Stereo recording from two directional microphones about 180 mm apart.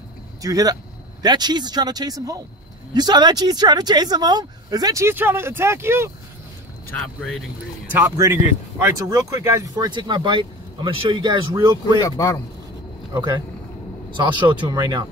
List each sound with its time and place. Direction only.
0.4 s speech: 20° right (ahead or behind)
7.0 s speech: 5° left (ahead or behind)
7.9 s speech: 15° right (ahead or behind)
12.0 s speech: 20° left (ahead or behind)
14.1 s speech: 25° right (ahead or behind)